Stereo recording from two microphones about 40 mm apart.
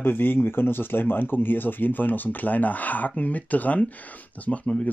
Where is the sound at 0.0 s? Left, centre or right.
Left.